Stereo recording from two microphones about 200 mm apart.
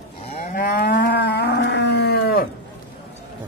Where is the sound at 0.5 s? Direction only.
50° left (ahead or behind).